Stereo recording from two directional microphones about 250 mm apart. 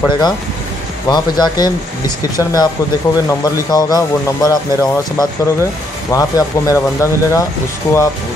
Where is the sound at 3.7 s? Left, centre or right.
Centre.